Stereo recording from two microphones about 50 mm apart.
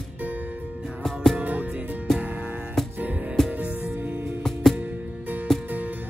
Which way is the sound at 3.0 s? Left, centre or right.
Right.